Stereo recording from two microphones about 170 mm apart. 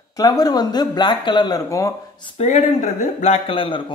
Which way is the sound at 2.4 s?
40° left (ahead or behind).